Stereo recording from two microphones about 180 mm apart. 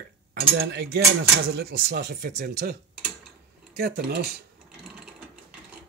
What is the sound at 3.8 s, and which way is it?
Speech, 60° right (ahead or behind).